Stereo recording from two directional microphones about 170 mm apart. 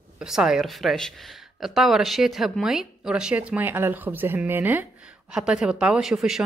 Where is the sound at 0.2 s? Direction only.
5° right (ahead or behind).